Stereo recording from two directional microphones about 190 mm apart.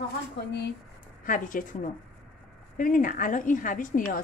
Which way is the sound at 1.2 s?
45° left (ahead or behind).